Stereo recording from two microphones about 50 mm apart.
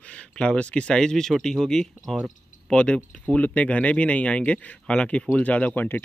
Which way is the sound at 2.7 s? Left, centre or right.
Left.